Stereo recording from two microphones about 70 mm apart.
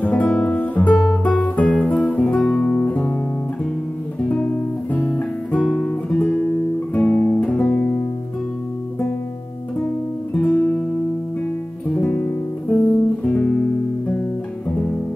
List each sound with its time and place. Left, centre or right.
0.0 s guitar: left
0.9 s music: centre
1.2 s guitar: centre
2.3 s guitar: centre
4.3 s music: centre
5.7 s guitar: centre
10.3 s music: centre